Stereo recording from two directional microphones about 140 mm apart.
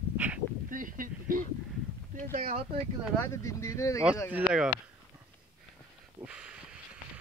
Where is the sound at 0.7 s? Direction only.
75° right (ahead or behind).